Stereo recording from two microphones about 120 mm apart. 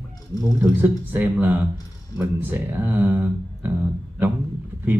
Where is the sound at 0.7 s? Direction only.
15° right (ahead or behind).